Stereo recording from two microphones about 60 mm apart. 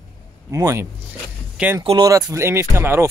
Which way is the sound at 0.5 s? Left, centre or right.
Right.